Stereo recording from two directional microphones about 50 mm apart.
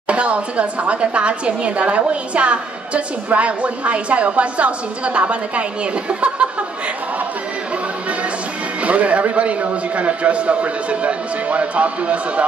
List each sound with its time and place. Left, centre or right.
0.1 s a woman's voice: right
8.8 s a woman's voice: right